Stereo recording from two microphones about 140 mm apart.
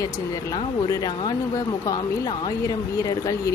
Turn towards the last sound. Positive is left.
turn(degrees=25)  # may be behind; listen again after turning